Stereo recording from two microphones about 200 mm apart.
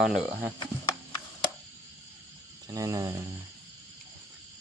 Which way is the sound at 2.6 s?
15° right (ahead or behind).